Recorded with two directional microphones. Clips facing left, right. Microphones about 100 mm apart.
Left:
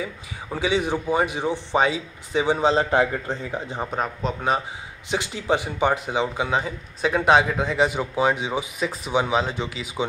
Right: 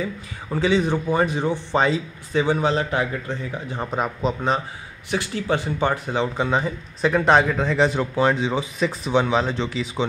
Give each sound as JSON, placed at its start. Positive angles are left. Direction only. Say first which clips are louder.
{"t": 0.0, "sound": "speech", "louder": "right 3 dB", "side_deg": 10}
{"t": 3.9, "sound": "a man's voice", "louder": "right 4 dB", "side_deg": 0}
{"t": 5.1, "sound": "speech", "louder": "even", "side_deg": 20}